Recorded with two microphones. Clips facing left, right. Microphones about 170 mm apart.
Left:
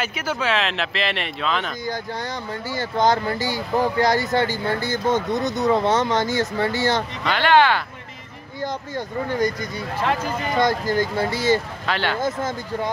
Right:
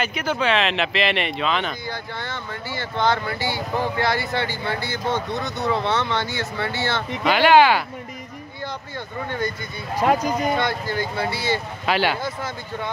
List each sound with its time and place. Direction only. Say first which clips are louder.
0.0 s speech: right 2 dB; 5° left (ahead or behind)
1.9 s speech: left 3 dB; 40° left (ahead or behind)
7.2 s speech: right 3 dB; 10° right (ahead or behind)
8.9 s speech: left 5 dB; 40° left (ahead or behind)
10.6 s speech: left 4 dB; 40° left (ahead or behind)
11.8 s speech: right 3 dB; 10° right (ahead or behind)
12.2 s speech: left 5 dB; 45° left (ahead or behind)